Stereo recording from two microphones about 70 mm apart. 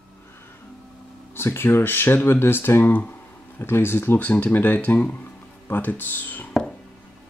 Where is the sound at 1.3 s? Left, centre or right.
Left.